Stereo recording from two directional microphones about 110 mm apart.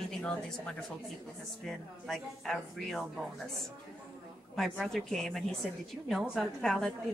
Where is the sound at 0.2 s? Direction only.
5° left (ahead or behind).